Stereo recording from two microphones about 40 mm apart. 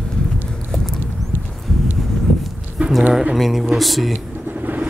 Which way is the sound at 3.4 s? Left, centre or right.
Centre.